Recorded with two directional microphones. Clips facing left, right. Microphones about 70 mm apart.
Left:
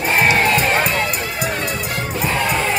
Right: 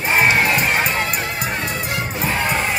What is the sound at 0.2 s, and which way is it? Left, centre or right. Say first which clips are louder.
Music: left 1 dB; right.